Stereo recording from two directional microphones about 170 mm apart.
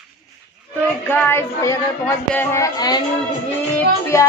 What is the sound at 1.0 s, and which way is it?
Music, 10° left (ahead or behind).